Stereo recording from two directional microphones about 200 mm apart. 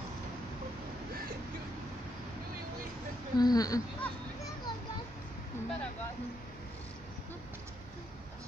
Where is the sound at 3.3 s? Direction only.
20° left (ahead or behind).